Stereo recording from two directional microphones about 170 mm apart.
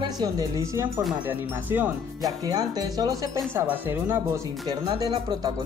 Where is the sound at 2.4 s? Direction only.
20° right (ahead or behind).